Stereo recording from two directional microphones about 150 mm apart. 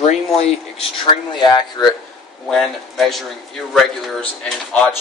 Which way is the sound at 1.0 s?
30° left (ahead or behind).